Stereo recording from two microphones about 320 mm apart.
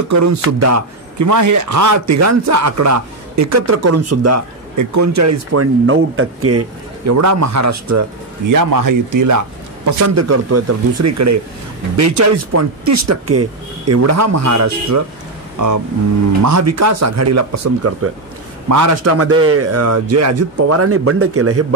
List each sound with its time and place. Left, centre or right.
0.1 s speech: right
7.1 s speech: right
8.5 s speech: right
9.8 s speech: right